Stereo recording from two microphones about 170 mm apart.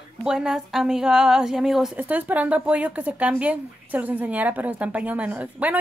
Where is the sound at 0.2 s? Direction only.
5° right (ahead or behind).